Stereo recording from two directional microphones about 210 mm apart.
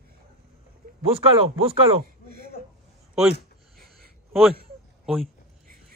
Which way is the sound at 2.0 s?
45° right (ahead or behind).